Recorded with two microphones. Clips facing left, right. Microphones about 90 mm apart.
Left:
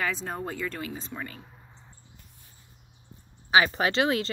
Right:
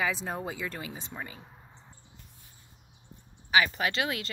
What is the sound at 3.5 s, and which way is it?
Speech, 30° left (ahead or behind).